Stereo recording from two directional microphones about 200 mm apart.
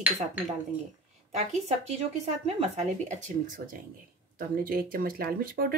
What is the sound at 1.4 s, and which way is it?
Speech, 35° right (ahead or behind).